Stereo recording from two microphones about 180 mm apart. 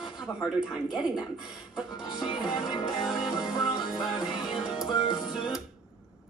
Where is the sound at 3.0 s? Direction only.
Centre (ahead or behind).